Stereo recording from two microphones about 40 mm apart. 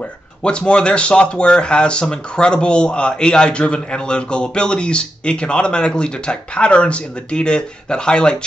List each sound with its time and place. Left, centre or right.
0.4 s speech: left